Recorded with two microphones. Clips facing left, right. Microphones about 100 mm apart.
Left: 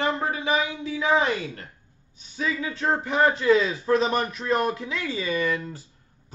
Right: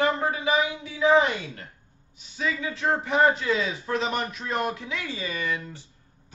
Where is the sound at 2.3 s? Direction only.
30° left (ahead or behind).